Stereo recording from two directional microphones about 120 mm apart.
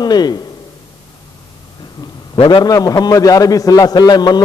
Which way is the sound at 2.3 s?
40° left (ahead or behind).